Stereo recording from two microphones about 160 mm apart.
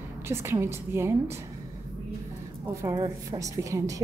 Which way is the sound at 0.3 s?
15° right (ahead or behind).